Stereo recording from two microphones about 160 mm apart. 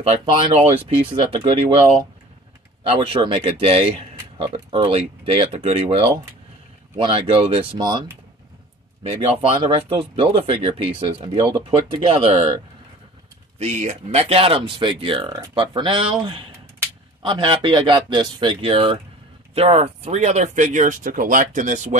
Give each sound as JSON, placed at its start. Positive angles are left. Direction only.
{"t": 0.2, "sound": "speech", "side_deg": -30}
{"t": 2.9, "sound": "speech", "side_deg": -30}
{"t": 9.1, "sound": "speech", "side_deg": -40}
{"t": 11.3, "sound": "speech", "side_deg": -25}
{"t": 13.6, "sound": "speech", "side_deg": -45}